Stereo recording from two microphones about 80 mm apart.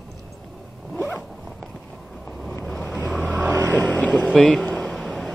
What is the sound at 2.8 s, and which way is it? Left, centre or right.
Vehicle, left.